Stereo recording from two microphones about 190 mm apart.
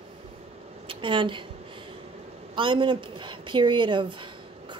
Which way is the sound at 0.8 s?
25° right (ahead or behind).